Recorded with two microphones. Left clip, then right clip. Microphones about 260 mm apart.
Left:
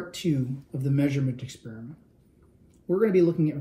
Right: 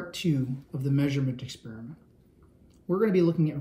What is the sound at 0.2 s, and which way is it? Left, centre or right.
Speech, right.